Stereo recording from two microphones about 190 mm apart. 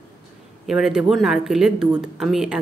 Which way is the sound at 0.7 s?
Centre (ahead or behind).